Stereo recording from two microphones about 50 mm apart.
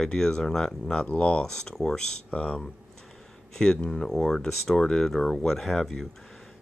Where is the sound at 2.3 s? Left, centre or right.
Left.